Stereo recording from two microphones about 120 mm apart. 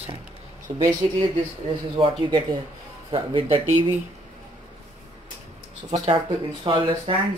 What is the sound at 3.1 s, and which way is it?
Speech, 45° right (ahead or behind).